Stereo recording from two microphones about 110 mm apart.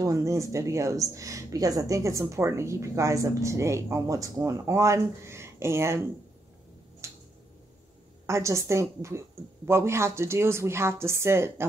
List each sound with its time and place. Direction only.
0.0 s speech: 30° right (ahead or behind)
7.0 s finger snapping: 25° right (ahead or behind)
8.3 s speech: 25° right (ahead or behind)